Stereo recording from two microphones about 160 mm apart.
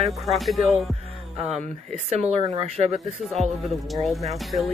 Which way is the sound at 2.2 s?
35° right (ahead or behind).